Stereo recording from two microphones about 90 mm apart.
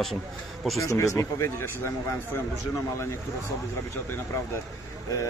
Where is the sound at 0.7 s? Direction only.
35° left (ahead or behind).